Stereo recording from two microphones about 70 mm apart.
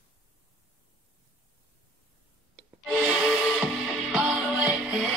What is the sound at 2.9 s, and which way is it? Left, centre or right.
Music, centre.